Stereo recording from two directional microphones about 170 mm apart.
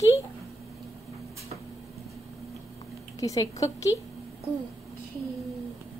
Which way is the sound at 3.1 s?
20° left (ahead or behind).